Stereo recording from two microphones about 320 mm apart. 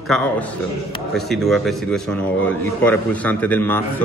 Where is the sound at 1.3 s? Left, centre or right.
Centre.